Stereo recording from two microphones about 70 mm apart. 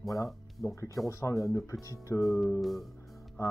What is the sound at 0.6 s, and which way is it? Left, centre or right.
Speech, left.